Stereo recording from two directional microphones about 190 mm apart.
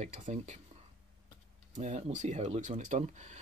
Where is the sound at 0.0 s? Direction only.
40° right (ahead or behind).